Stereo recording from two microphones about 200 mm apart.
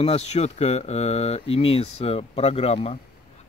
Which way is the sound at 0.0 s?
30° left (ahead or behind).